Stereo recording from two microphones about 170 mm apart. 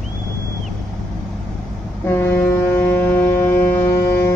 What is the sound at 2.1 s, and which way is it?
Ship, 15° left (ahead or behind).